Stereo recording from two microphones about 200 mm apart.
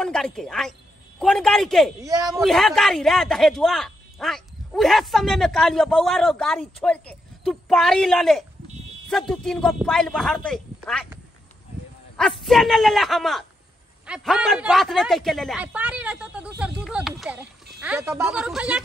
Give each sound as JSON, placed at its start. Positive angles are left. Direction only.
{"t": 0.0, "sound": "speech", "side_deg": 0}
{"t": 2.0, "sound": "speech", "side_deg": -15}
{"t": 2.4, "sound": "speech", "side_deg": 0}
{"t": 12.2, "sound": "speech", "side_deg": 0}